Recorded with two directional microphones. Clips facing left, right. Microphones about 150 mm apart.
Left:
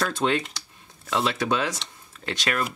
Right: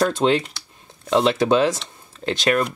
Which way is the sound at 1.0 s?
25° right (ahead or behind).